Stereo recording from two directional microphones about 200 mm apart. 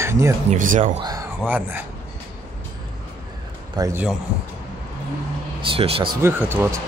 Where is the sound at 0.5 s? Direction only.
40° right (ahead or behind).